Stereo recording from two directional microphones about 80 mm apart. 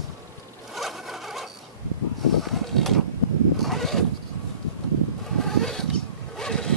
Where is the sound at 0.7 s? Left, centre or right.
Centre.